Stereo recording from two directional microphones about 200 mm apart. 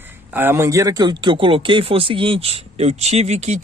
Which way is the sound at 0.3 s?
10° right (ahead or behind).